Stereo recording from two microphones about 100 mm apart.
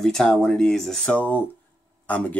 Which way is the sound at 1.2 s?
20° left (ahead or behind).